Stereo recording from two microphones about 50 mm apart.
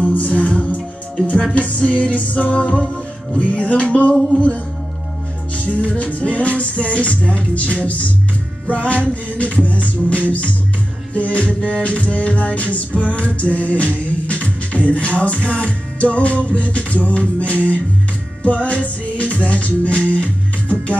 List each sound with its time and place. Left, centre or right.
0.0 s music: left
4.1 s music: centre
5.6 s music: left